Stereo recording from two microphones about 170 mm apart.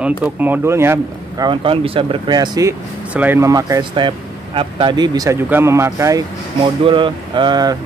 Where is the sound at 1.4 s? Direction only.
30° right (ahead or behind).